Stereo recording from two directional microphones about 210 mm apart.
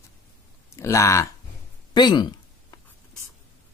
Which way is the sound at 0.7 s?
15° left (ahead or behind).